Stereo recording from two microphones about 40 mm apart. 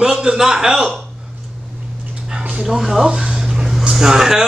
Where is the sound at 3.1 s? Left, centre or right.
Centre.